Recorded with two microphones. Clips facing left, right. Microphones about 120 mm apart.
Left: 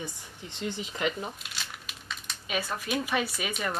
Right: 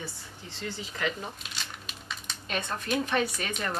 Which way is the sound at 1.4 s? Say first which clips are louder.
Right 1 dB; centre (ahead or behind).